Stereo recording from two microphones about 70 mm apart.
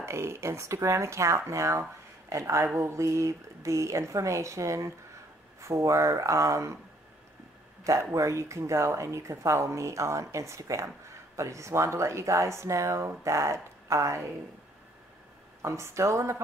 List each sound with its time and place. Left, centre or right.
0.0 s speech: right
7.8 s speech: right
15.6 s speech: right